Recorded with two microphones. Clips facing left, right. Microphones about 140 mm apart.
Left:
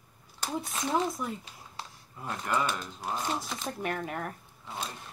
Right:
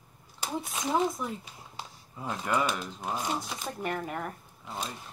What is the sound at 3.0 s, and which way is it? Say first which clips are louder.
Speech: right 1 dB; centre (ahead or behind).